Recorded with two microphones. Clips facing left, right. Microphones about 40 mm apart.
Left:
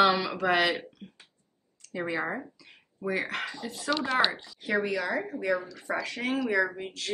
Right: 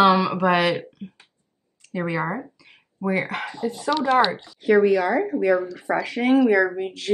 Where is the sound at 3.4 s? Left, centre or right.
Right.